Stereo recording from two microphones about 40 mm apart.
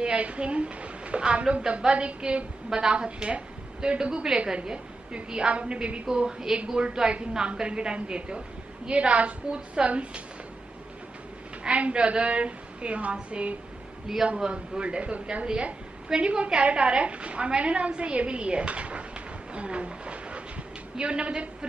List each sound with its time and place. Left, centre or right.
0.0 s a woman's voice: right
6.0 s a woman's voice: centre; by 10.2 s right
11.6 s a woman's voice: right
19.5 s a sound: right
21.0 s a woman's voice: right